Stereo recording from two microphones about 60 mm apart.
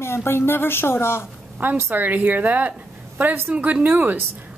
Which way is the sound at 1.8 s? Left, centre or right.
Right.